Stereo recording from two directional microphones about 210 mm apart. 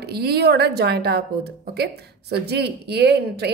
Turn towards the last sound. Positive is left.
turn(degrees=-50)  # may be behind; listen again after turning